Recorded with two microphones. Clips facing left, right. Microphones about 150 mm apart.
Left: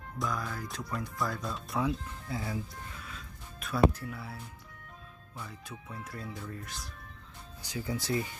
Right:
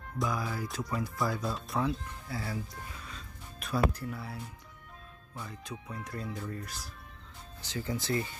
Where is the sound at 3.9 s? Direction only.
Centre (ahead or behind).